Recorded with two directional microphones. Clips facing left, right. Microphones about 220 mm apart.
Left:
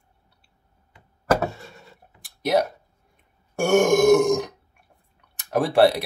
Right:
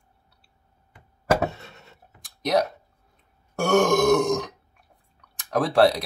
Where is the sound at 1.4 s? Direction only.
25° right (ahead or behind).